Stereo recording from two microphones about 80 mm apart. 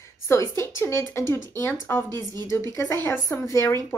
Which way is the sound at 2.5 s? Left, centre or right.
Left.